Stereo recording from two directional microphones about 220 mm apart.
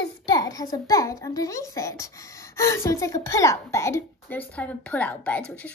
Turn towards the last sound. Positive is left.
turn(degrees=5)  # may be behind; listen again after turning